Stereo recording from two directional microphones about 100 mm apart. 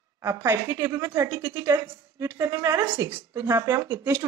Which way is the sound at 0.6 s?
35° right (ahead or behind).